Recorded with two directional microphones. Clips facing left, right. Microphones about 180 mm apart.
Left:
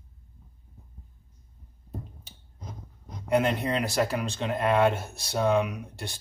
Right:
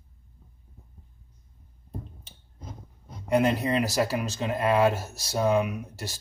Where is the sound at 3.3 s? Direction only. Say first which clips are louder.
Right 1 dB; centre (ahead or behind).